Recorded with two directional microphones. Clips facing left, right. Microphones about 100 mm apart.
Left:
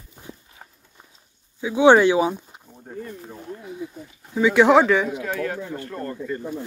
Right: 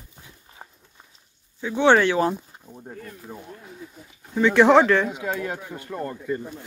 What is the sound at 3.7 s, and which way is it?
Speech, 5° left (ahead or behind).